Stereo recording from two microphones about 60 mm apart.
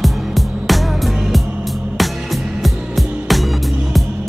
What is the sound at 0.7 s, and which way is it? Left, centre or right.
Music, centre.